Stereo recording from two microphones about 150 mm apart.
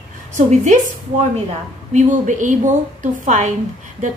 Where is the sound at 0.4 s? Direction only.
55° right (ahead or behind).